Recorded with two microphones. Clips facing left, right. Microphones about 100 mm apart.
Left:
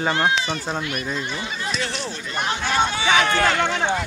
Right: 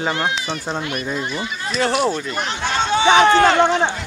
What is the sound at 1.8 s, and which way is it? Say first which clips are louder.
Speech: right 10 dB; 50° right (ahead or behind).